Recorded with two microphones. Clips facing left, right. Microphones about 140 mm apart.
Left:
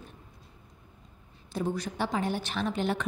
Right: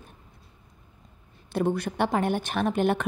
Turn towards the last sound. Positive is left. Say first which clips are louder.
# right 5 dB
turn(degrees=-55)  # may be behind; listen again after turning